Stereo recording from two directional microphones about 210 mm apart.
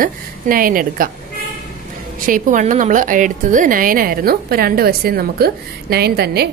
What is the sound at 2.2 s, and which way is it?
A woman's voice, 40° right (ahead or behind).